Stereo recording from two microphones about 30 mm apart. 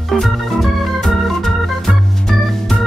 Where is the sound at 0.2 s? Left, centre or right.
Centre.